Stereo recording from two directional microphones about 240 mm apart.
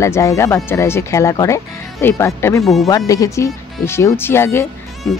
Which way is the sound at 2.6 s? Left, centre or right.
Centre.